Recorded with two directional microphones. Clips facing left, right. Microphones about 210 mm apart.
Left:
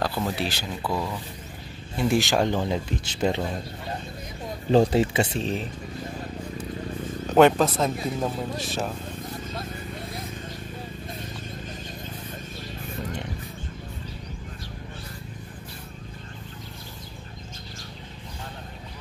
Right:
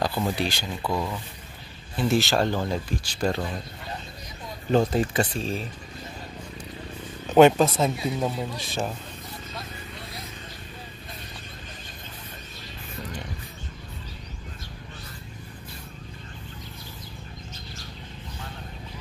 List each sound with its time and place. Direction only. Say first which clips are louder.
0.0 s speech: right 1 dB; centre (ahead or behind)
2.0 s speech: left 1 dB; 15° left (ahead or behind)
4.6 s speech: left 3 dB; 30° left (ahead or behind)
7.3 s speech: right 1 dB; centre (ahead or behind)